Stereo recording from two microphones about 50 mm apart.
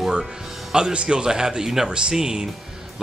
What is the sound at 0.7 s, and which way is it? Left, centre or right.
Speech, centre.